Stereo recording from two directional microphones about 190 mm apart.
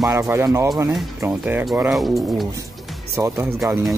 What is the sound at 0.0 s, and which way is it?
Speech, 15° right (ahead or behind).